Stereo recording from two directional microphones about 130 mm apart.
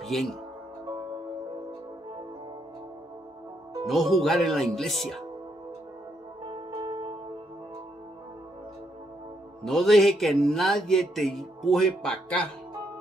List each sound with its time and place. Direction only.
0.0 s speech: centre (ahead or behind)
3.8 s speech: centre (ahead or behind)
6.5 s music: 40° right (ahead or behind)
9.7 s speech: centre (ahead or behind)